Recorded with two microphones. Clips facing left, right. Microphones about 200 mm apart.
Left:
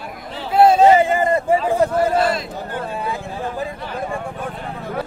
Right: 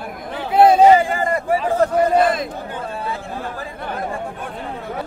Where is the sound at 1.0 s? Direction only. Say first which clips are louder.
Left 3 dB; 20° left (ahead or behind).